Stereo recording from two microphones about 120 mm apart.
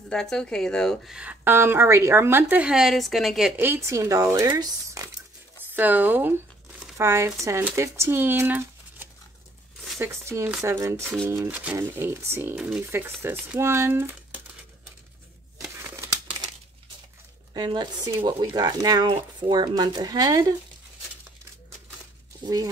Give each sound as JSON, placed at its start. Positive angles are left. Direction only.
{"t": 0.1, "sound": "speech", "side_deg": 5}
{"t": 1.1, "sound": "a woman's voice", "side_deg": -10}
{"t": 3.6, "sound": "speech", "side_deg": -20}
{"t": 5.6, "sound": "speech", "side_deg": -15}
{"t": 12.5, "sound": "a woman's voice", "side_deg": -5}
{"t": 12.8, "sound": "speech", "side_deg": -20}
{"t": 15.8, "sound": "crumpling", "side_deg": -20}
{"t": 17.6, "sound": "speech", "side_deg": -40}
{"t": 22.4, "sound": "speech", "side_deg": -30}